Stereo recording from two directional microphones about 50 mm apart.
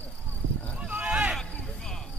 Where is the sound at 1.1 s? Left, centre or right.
Right.